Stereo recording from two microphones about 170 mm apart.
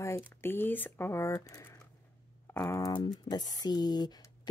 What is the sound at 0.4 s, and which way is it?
Speech, 10° left (ahead or behind).